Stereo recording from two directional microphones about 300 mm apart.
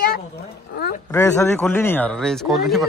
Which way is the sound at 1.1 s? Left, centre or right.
Centre.